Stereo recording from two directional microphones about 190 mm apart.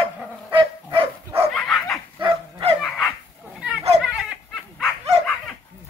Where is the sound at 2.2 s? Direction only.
25° right (ahead or behind).